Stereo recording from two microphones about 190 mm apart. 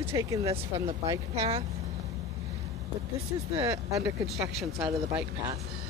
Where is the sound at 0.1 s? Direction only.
15° right (ahead or behind).